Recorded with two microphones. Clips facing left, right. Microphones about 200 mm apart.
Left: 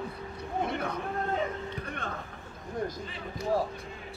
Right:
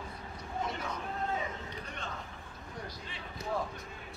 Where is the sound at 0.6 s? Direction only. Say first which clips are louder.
Left 5 dB; 60° left (ahead or behind).